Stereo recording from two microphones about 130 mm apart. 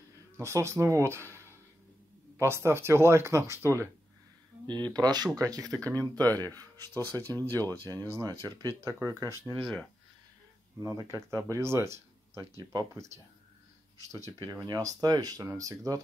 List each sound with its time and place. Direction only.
0.4 s speech: 20° right (ahead or behind)
4.6 s speech: 35° right (ahead or behind)
5.6 s speech: 5° left (ahead or behind)
6.3 s speech: 30° right (ahead or behind)
7.1 s speech: 15° left (ahead or behind)
7.8 s speech: 25° right (ahead or behind)
10.8 s speech: 20° right (ahead or behind)
14.1 s speech: 25° left (ahead or behind)
14.5 s speech: 30° right (ahead or behind)